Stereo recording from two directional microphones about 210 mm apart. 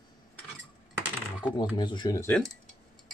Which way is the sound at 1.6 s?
20° left (ahead or behind).